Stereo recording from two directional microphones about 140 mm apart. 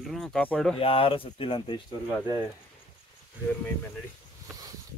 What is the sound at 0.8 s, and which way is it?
Speech, 40° left (ahead or behind).